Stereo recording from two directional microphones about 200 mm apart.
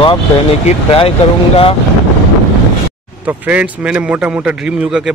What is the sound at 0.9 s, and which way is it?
Speech, 30° left (ahead or behind).